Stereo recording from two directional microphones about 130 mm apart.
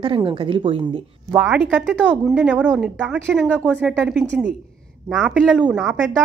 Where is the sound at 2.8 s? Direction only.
10° right (ahead or behind).